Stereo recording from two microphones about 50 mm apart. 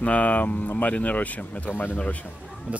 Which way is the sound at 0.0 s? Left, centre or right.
Left.